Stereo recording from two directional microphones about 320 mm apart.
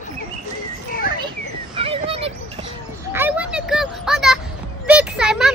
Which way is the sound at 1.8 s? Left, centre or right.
Centre.